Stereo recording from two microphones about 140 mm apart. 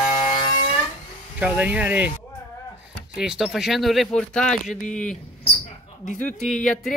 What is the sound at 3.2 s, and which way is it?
Speech, 5° right (ahead or behind).